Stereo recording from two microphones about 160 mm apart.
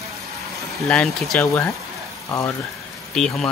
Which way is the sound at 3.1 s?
5° left (ahead or behind).